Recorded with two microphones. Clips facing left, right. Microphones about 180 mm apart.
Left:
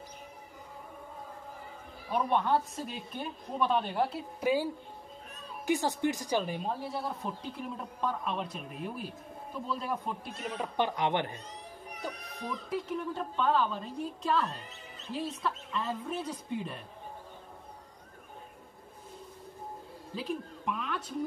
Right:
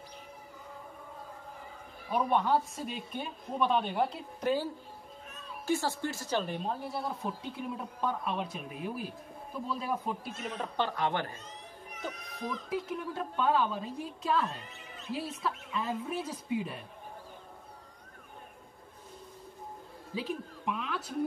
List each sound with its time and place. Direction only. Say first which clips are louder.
2.0 s speech: even; 5° right (ahead or behind)
5.7 s speech: left 2 dB; 15° left (ahead or behind); by 10.7 s centre (ahead or behind)
10.8 s speech: left 2 dB; 15° left (ahead or behind)
11.9 s music: even; 35° left (ahead or behind)
12.4 s a woman's voice: even; 5° right (ahead or behind)
20.2 s speech: even; centre (ahead or behind)